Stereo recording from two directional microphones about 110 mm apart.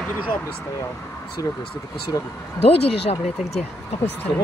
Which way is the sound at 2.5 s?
60° left (ahead or behind).